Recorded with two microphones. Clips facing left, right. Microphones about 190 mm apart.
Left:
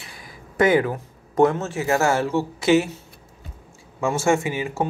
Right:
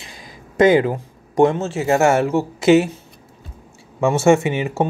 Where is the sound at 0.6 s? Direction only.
25° right (ahead or behind).